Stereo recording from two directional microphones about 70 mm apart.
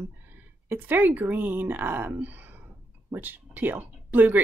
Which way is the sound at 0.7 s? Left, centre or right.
Right.